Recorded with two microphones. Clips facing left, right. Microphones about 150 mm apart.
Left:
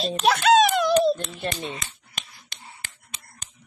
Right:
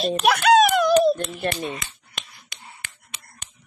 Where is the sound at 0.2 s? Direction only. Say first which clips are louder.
Left 1 dB; 25° left (ahead or behind).